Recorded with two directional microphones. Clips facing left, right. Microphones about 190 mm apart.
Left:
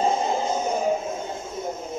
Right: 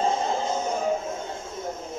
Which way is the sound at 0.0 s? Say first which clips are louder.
Left 2 dB; 15° left (ahead or behind).